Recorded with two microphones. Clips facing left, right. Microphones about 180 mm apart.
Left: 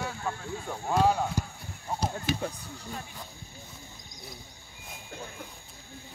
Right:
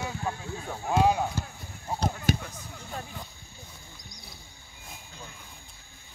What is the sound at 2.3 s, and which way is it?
Basketball bounce, 45° right (ahead or behind).